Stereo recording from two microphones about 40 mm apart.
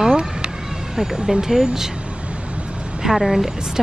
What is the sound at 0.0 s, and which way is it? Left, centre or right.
Cat, right.